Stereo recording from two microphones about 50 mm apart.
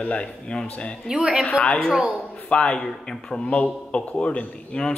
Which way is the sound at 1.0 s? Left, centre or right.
Centre.